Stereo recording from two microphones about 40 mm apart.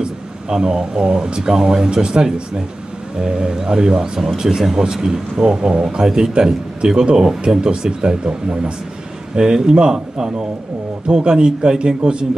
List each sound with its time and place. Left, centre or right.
0.0 s speech: right